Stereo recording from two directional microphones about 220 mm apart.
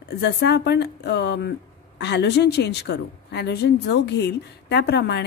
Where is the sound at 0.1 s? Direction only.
50° left (ahead or behind).